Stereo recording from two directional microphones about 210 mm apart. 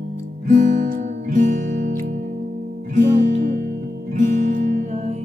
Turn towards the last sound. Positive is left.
turn(degrees=-35)  # may be behind; listen again after turning